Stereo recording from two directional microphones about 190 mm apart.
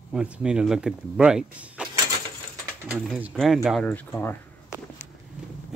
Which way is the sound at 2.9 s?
5° right (ahead or behind).